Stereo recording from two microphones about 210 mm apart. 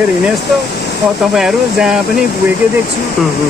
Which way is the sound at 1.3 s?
5° right (ahead or behind).